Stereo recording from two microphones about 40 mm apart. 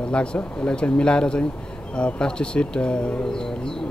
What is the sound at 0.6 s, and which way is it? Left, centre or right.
Speech, left.